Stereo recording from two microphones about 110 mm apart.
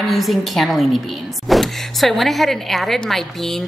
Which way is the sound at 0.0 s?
Centre (ahead or behind).